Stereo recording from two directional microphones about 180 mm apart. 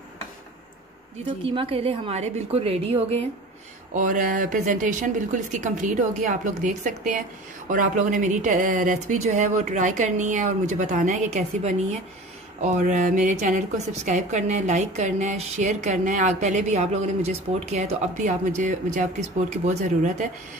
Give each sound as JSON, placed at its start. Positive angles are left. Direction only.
{"t": 1.4, "sound": "a woman's voice", "side_deg": -30}
{"t": 3.9, "sound": "a woman's voice", "side_deg": -45}